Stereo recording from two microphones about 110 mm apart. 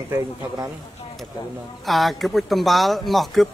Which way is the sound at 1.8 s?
Centre (ahead or behind).